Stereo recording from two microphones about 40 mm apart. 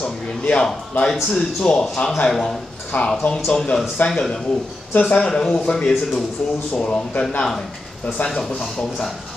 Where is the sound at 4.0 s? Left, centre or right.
Left.